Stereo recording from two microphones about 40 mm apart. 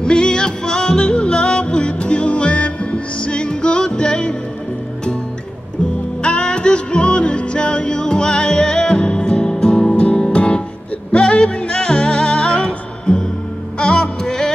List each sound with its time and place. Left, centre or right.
0.0 s music: left
6.2 s music: left